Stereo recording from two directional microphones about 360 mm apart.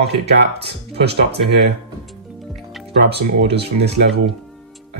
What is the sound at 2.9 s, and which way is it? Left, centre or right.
Speech, right.